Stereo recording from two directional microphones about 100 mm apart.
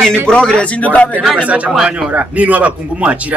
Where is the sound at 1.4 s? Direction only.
15° right (ahead or behind).